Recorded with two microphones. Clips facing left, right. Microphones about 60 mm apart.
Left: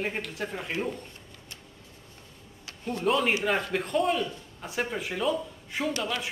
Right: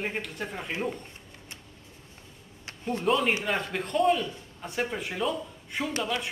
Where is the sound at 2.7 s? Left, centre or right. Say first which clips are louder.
Right 2 dB; right.